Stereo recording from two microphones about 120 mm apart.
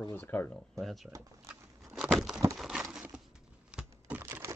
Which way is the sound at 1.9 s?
Centre (ahead or behind).